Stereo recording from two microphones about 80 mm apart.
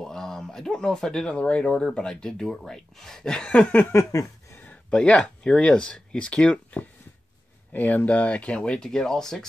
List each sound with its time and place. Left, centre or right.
0.0 s speech: centre
3.9 s a sound: left
4.6 s speech: centre